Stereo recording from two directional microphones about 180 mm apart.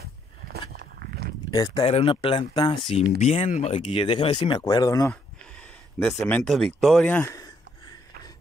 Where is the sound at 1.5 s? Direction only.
20° left (ahead or behind).